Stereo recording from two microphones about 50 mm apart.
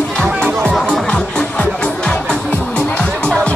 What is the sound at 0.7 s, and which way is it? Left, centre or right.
Music, centre.